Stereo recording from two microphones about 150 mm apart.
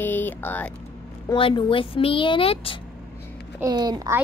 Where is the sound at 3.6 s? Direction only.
25° right (ahead or behind).